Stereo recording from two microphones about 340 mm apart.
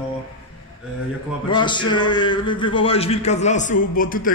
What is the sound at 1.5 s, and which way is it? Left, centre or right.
A man's voice, centre.